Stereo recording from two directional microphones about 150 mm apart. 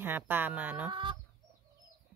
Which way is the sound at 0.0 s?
15° right (ahead or behind).